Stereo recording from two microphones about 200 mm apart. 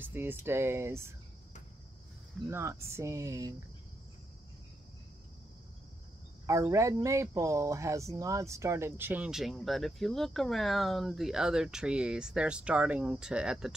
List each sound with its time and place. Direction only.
0.0 s speech: 10° right (ahead or behind)
2.4 s speech: 15° right (ahead or behind)
6.4 s speech: 15° right (ahead or behind)